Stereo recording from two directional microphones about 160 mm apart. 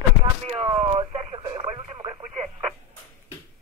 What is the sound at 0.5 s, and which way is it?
Radio, 35° right (ahead or behind).